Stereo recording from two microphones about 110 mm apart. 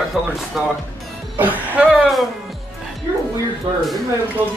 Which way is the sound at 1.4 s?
15° right (ahead or behind).